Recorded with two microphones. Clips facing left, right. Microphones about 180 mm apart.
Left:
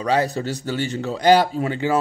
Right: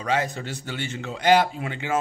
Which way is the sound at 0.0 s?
35° left (ahead or behind).